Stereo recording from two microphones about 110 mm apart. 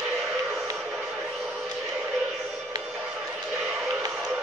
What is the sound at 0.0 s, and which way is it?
Vehicle, centre (ahead or behind).